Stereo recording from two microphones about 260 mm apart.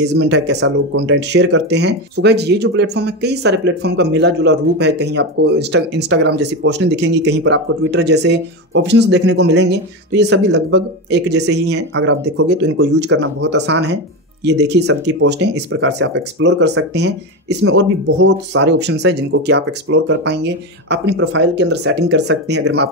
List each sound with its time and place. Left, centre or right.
0.0 s speech: right